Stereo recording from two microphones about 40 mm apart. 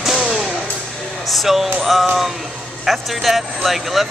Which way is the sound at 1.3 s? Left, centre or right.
Centre.